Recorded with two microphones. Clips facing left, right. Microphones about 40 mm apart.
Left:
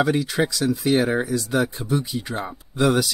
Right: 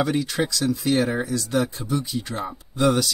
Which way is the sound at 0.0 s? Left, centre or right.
Centre.